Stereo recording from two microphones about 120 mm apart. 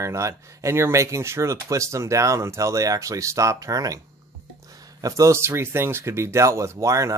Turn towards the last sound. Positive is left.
turn(degrees=-25)  # may be behind; listen again after turning